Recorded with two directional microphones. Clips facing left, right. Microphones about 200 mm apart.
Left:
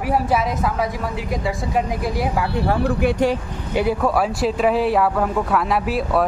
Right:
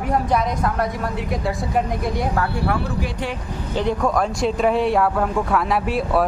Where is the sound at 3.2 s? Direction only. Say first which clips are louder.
Left 11 dB; 45° left (ahead or behind).